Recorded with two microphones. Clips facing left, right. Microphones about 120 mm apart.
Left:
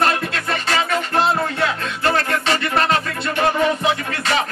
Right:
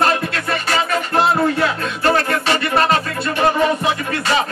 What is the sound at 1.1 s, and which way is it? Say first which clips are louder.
Music: right 4 dB; 20° right (ahead or behind).